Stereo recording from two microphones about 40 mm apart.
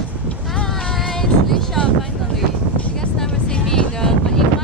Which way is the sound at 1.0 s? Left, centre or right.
Centre.